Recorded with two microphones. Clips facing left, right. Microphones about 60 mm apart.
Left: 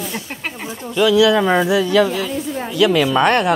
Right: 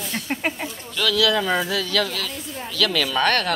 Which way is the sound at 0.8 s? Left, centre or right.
Left.